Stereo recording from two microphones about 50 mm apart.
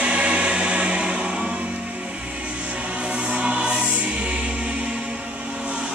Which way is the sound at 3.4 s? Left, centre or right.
Centre.